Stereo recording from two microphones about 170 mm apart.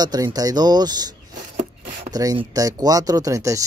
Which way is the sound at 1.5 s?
45° right (ahead or behind).